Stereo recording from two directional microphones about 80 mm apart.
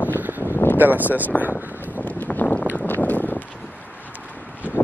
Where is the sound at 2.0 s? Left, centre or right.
Left.